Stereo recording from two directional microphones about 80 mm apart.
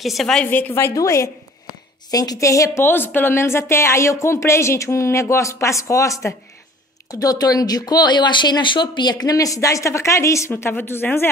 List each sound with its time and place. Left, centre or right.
0.0 s a woman's voice: centre
0.5 s a woman's voice: left
0.9 s speech: left
2.0 s speech: left
2.8 s speech: left
10.5 s a woman's voice: left